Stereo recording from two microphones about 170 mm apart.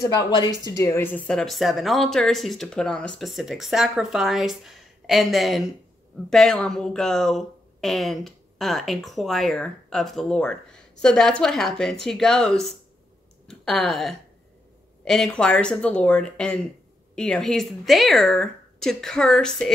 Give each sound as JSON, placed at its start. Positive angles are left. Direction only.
{"t": 0.0, "sound": "speech", "side_deg": 20}